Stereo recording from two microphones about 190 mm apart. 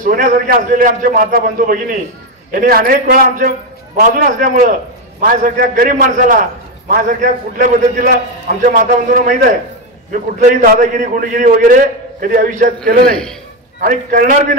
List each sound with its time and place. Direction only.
0.0 s a man's voice: 45° right (ahead or behind)